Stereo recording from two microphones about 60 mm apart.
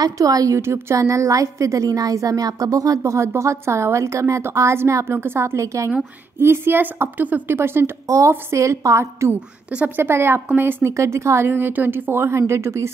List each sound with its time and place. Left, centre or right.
0.0 s a woman's voice: right
0.6 s a woman's voice: right
0.9 s a woman's voice: right
3.0 s a woman's voice: right
5.1 s a woman's voice: right
6.4 s a woman's voice: right
7.4 s a woman's voice: right
8.3 s a woman's voice: right
9.8 s a woman's voice: right
10.9 s a woman's voice: right
11.5 s a woman's voice: right